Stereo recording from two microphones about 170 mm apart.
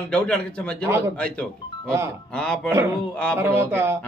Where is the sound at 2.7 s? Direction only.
15° right (ahead or behind).